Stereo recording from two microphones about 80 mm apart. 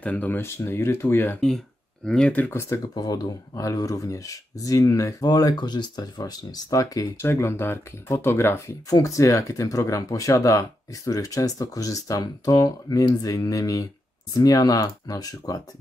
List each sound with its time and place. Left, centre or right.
0.0 s speech: centre
2.0 s speech: centre
2.9 s speech: left
3.6 s speech: left
5.2 s speech: left
7.2 s speech: left